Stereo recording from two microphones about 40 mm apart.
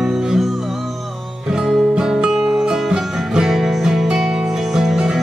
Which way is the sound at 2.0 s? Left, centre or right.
Centre.